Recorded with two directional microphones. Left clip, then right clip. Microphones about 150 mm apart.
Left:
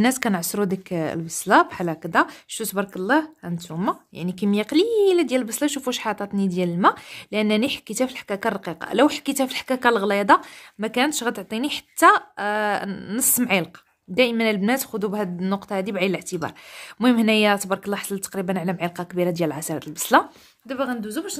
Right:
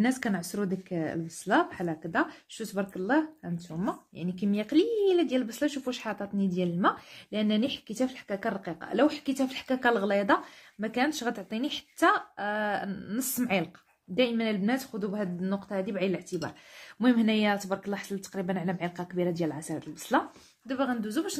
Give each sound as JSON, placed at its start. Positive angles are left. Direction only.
{"t": 0.0, "sound": "speech", "side_deg": 50}
{"t": 20.6, "sound": "a woman's voice", "side_deg": 20}